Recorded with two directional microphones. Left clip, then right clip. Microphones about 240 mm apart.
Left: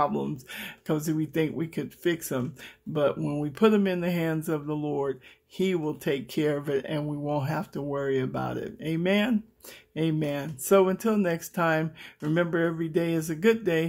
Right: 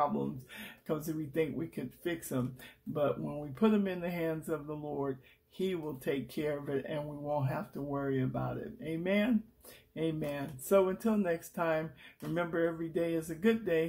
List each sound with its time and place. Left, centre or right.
0.0 s speech: left